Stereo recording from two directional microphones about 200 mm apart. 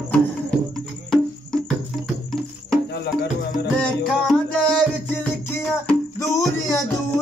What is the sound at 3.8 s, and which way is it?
Music, 5° left (ahead or behind).